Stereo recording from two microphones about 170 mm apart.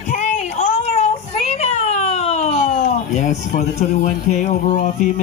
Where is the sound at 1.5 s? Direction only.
40° left (ahead or behind).